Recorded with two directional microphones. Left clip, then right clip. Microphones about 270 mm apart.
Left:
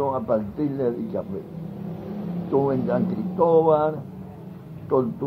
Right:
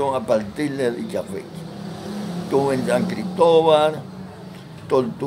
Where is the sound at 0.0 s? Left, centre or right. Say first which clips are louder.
Right 3 dB; right.